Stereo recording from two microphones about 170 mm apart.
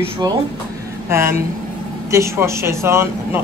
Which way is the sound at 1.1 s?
15° right (ahead or behind).